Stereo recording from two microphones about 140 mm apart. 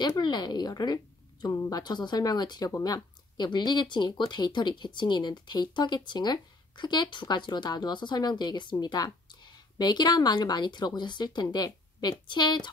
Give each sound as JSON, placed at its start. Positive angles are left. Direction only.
{"t": 0.0, "sound": "speech", "side_deg": 30}